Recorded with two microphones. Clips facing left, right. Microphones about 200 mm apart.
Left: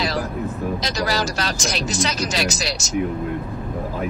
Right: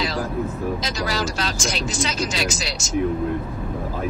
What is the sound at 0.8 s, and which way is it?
Speech, 40° left (ahead or behind).